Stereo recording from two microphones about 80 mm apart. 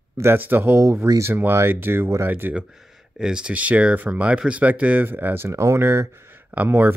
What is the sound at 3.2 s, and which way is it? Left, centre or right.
Speech, centre.